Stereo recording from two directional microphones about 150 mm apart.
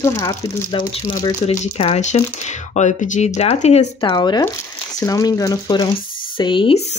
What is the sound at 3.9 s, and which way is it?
Speech, 30° left (ahead or behind).